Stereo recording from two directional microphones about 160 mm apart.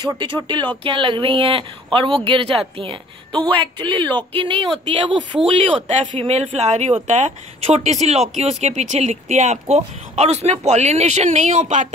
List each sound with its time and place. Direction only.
0.0 s a woman's voice: 30° right (ahead or behind); by 11.9 s 50° right (ahead or behind)